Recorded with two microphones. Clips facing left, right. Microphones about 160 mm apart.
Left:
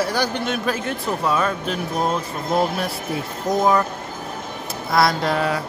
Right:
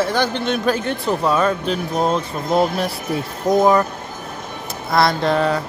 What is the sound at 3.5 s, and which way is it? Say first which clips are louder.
Speech: right 5 dB; 20° right (ahead or behind).